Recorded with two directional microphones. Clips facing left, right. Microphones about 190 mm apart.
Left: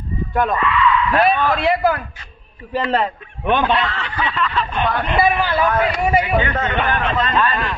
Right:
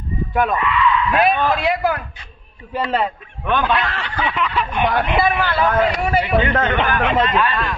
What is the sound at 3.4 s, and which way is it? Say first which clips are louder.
Snicker: left 2 dB; 20° left (ahead or behind).